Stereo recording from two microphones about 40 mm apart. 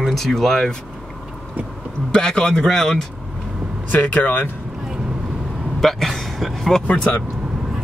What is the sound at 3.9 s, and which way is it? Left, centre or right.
Speech, left.